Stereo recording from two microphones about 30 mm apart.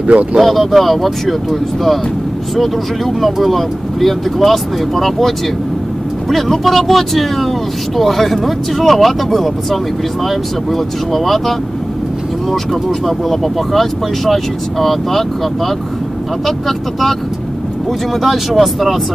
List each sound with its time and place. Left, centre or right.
0.0 s speech: right
0.4 s speech: centre
3.5 s speech: centre
6.3 s speech: centre
13.0 s speech: centre
18.2 s speech: centre